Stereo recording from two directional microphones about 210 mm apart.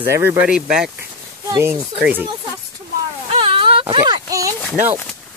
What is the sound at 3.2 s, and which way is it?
Whimper, 25° right (ahead or behind).